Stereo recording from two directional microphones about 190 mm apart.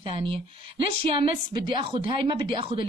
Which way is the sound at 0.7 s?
30° right (ahead or behind).